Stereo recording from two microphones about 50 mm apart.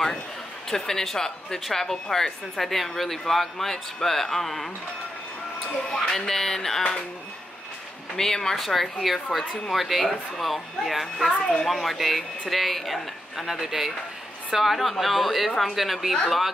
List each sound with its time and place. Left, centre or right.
0.7 s speech: centre
6.0 s speech: centre
8.2 s speech: centre
11.3 s speech: centre
11.6 s speech: centre